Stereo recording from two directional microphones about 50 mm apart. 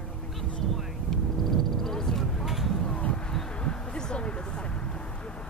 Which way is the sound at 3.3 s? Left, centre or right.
Centre.